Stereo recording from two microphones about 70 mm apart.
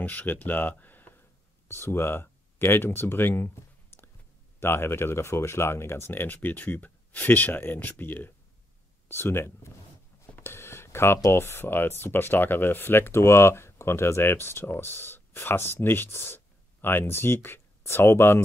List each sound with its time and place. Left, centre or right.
0.0 s speech: left
10.3 s a sound: left
11.3 s speech: left